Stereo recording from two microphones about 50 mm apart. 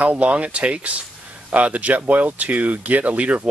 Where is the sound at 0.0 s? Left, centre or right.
Right.